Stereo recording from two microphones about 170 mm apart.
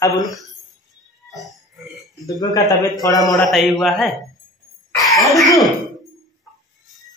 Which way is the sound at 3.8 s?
Centre (ahead or behind).